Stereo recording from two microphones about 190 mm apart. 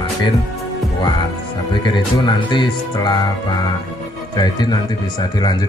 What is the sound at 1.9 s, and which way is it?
Speech, 25° left (ahead or behind).